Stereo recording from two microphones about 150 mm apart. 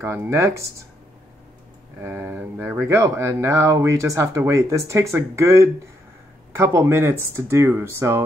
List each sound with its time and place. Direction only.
0.0 s speech: 15° right (ahead or behind)
2.0 s speech: 15° right (ahead or behind)